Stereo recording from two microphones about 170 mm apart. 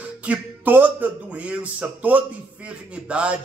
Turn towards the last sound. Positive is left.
turn(degrees=-5)  # may be behind; listen again after turning